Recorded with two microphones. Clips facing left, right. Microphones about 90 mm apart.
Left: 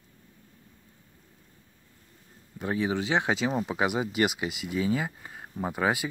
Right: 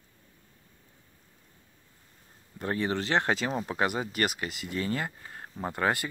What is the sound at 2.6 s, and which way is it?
Speech, 5° left (ahead or behind).